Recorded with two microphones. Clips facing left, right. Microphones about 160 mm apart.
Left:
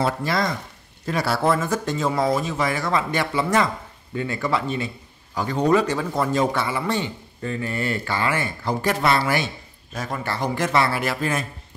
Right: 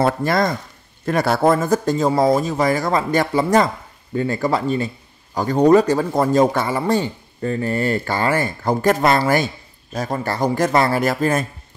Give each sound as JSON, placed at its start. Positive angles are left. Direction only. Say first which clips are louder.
{"t": 0.0, "sound": "a man's voice", "louder": "right 5 dB", "side_deg": -50}